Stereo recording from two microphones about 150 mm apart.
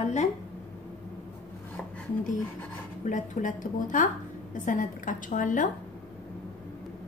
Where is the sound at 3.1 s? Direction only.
55° left (ahead or behind).